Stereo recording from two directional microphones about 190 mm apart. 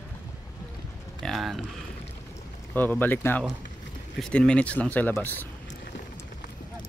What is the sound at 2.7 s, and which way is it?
Speech, 10° left (ahead or behind).